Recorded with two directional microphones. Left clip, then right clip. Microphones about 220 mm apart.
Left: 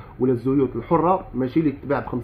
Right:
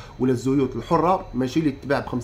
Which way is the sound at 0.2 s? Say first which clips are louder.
Left 1 dB; 20° right (ahead or behind).